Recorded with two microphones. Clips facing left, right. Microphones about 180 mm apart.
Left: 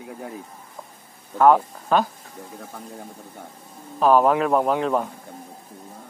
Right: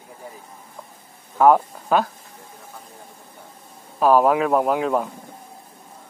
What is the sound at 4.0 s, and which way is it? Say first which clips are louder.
A man's voice: right 1 dB; 5° right (ahead or behind).